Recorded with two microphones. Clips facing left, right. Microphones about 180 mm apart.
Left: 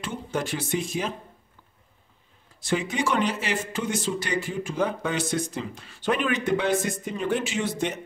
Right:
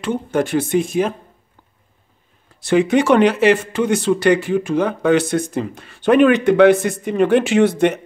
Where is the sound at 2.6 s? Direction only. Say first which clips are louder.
Right 12 dB; 65° right (ahead or behind).